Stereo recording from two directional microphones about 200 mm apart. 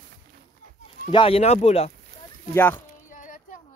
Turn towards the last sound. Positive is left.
turn(degrees=40)  # may be behind; listen again after turning